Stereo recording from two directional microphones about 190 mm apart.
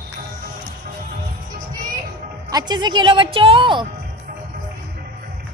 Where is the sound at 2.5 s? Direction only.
20° right (ahead or behind).